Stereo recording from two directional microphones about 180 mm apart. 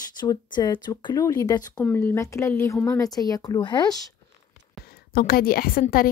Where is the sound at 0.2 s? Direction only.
25° left (ahead or behind).